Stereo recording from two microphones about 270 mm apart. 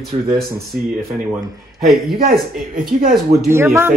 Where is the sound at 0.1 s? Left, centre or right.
Right.